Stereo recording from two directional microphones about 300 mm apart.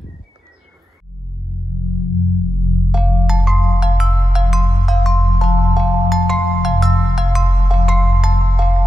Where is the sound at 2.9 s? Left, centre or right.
Centre.